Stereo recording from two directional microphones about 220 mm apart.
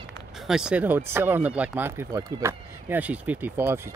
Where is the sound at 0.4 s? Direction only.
5° right (ahead or behind).